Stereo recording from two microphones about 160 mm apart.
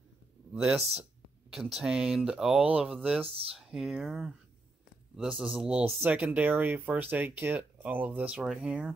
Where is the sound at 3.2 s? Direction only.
35° right (ahead or behind).